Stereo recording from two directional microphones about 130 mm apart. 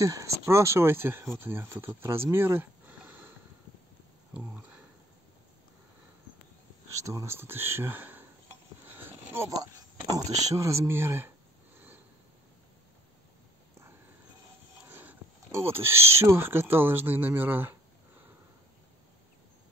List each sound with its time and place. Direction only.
0.0 s speech: 25° right (ahead or behind)
4.3 s a sound: 10° right (ahead or behind)
7.0 s speech: 25° right (ahead or behind)
8.8 s a sound: 15° right (ahead or behind)
10.1 s speech: 25° right (ahead or behind)
14.9 s speech: 15° right (ahead or behind)